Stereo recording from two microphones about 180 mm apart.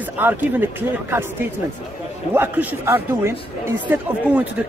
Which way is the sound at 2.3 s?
10° right (ahead or behind).